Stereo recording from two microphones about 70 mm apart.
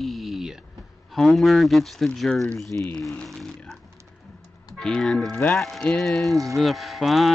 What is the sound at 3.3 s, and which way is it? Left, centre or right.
Speech, centre.